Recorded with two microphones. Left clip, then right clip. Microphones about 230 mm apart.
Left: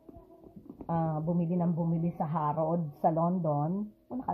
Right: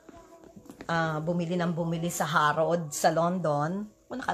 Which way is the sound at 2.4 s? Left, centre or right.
Right.